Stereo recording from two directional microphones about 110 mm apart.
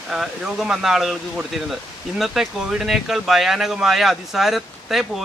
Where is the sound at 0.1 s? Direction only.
5° right (ahead or behind).